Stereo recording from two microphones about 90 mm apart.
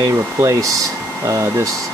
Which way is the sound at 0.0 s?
40° right (ahead or behind).